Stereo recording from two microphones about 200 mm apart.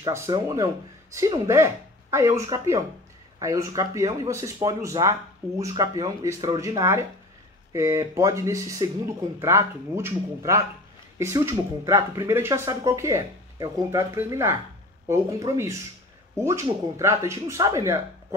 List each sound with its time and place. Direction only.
0.0 s speech: 15° right (ahead or behind)